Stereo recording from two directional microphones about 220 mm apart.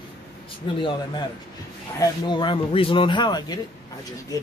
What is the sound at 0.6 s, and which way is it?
Speech, 25° left (ahead or behind).